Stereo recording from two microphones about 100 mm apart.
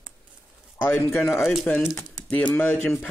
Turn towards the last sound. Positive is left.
turn(degrees=20)  # may be behind; listen again after turning